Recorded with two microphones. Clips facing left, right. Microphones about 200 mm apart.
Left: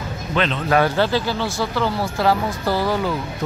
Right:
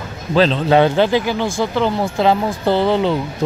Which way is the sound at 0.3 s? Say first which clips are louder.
Right 6 dB; 30° right (ahead or behind).